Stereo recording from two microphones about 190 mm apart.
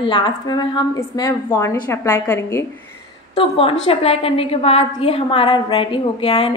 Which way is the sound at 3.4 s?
30° left (ahead or behind).